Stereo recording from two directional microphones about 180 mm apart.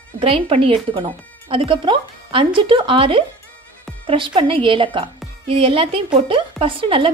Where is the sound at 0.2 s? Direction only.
30° right (ahead or behind).